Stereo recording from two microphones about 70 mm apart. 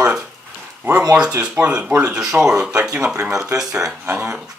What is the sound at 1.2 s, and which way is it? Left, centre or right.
Speech, centre.